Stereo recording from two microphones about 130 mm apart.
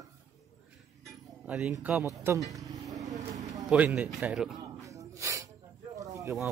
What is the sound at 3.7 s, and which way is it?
Speech, 5° right (ahead or behind).